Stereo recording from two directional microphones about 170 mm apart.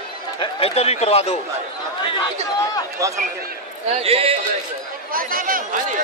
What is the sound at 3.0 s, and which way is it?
Speech, 20° right (ahead or behind).